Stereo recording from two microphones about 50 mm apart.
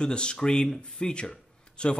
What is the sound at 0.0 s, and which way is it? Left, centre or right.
Speech, centre.